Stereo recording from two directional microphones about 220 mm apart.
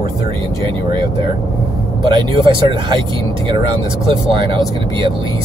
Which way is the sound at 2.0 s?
20° right (ahead or behind).